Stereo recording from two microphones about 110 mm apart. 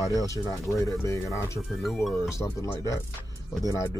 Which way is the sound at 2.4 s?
30° left (ahead or behind).